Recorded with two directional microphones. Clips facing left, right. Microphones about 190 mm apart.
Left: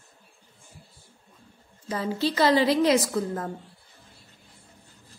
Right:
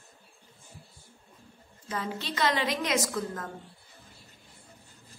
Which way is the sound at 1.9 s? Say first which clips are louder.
Left 8 dB; 30° left (ahead or behind).